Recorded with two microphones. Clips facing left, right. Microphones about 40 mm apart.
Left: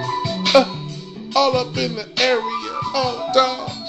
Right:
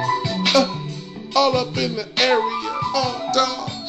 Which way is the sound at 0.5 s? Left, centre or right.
Left.